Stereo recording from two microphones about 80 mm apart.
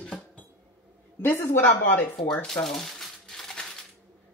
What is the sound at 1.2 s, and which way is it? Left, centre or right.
Speech, left.